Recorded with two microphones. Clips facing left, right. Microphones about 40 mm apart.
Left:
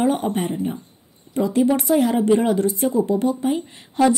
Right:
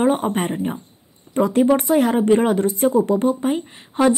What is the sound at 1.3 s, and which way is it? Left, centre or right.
Speech, right.